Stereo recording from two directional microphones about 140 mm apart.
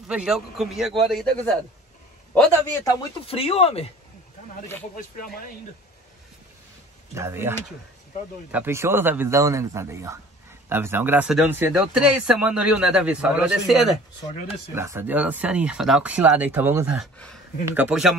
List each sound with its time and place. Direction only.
0.1 s a man's voice: 5° right (ahead or behind)
2.3 s a man's voice: 10° left (ahead or behind)
3.3 s speech: 45° left (ahead or behind)
4.9 s speech: 90° left
7.2 s a man's voice: 20° right (ahead or behind)
11.2 s a man's voice: 5° right (ahead or behind)
14.7 s speech: 15° right (ahead or behind)